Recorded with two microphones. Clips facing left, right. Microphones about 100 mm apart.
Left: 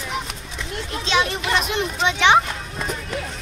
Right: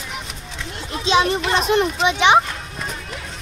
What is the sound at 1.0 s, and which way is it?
A child's voice, 20° right (ahead or behind).